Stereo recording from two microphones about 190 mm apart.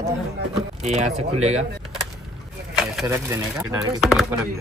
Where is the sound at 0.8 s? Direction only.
35° right (ahead or behind).